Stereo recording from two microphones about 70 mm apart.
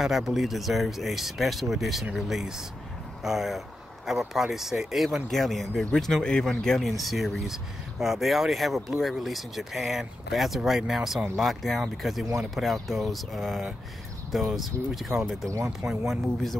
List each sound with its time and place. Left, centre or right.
0.0 s speech: centre
15.4 s speech: right